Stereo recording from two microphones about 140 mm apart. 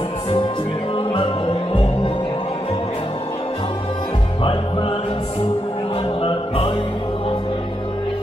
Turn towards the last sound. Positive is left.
turn(degrees=40)  # may be behind; listen again after turning